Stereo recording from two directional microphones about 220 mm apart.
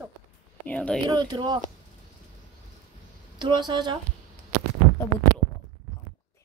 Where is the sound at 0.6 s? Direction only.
5° left (ahead or behind).